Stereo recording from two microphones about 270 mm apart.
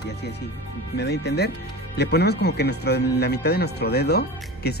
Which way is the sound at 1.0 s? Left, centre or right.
Left.